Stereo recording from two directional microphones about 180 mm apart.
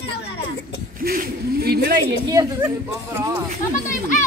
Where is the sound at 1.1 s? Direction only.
60° right (ahead or behind).